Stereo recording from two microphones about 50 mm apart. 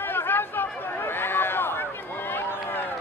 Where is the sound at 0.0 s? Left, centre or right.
Left.